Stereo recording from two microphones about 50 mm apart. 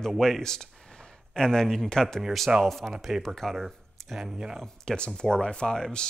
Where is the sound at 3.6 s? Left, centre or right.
Centre.